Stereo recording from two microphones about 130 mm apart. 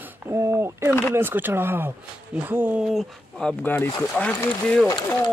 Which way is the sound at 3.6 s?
15° left (ahead or behind).